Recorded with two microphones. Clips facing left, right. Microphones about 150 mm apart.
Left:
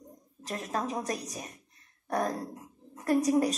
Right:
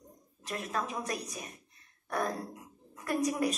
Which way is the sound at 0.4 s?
35° left (ahead or behind).